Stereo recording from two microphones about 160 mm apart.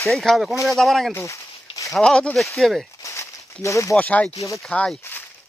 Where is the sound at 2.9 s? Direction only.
20° left (ahead or behind).